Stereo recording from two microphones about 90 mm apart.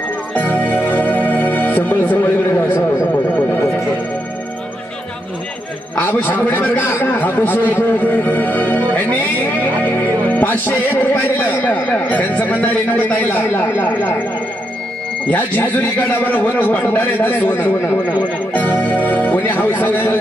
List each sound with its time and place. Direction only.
0.4 s music: 20° left (ahead or behind)
5.9 s a man's voice: 20° left (ahead or behind)
15.2 s a man's voice: 20° left (ahead or behind)